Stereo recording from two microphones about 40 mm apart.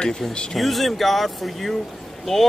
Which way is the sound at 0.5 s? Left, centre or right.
Centre.